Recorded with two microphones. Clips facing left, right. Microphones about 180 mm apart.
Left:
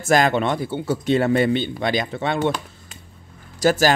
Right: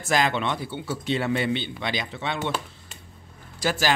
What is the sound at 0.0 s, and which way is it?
Speech, 45° left (ahead or behind).